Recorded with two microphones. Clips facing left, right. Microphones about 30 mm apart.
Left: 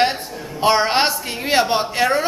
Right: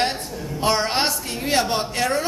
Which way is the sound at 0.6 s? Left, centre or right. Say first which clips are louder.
Left 5 dB; left.